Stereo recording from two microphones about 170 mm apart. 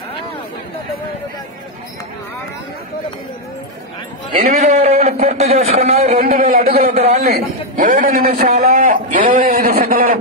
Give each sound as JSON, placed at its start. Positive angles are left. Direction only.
{"t": 4.4, "sound": "a sound", "side_deg": -40}
{"t": 5.2, "sound": "speech", "side_deg": -40}
{"t": 6.2, "sound": "a man's voice", "side_deg": -60}